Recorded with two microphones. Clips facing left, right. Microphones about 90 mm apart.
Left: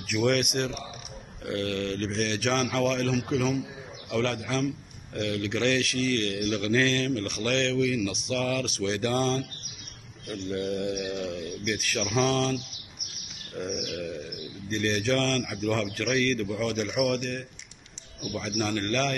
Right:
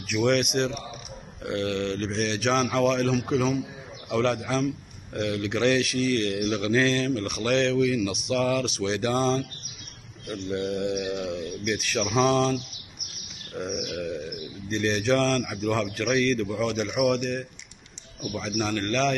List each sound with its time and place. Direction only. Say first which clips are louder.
0.3 s a man's voice: right 3 dB; 5° left (ahead or behind)
10.5 s a man's voice: right 2 dB; 5° right (ahead or behind)
13.6 s a man's voice: right 2 dB; 5° right (ahead or behind)